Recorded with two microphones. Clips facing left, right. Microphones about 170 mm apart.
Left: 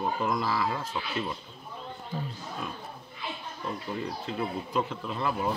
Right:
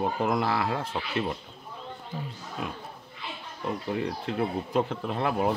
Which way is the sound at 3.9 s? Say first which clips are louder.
Right 5 dB; 60° right (ahead or behind).